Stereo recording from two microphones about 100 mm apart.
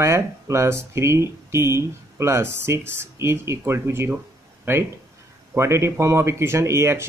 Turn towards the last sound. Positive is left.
turn(degrees=-25)  # may be behind; listen again after turning